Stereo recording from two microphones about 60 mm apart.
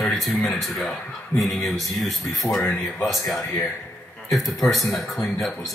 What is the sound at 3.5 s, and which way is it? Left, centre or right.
Speech, left.